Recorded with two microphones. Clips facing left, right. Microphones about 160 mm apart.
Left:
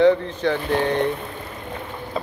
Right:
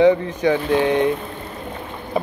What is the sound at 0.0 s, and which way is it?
Speech, 15° right (ahead or behind).